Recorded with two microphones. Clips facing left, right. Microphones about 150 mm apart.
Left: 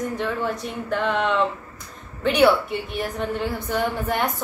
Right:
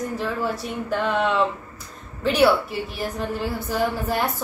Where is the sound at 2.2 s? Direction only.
Centre (ahead or behind).